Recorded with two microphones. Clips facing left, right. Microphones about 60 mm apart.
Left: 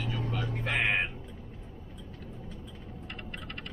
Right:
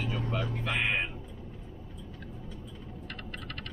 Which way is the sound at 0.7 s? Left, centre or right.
Left.